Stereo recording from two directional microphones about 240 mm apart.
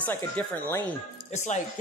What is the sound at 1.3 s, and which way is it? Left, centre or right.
Speech, left.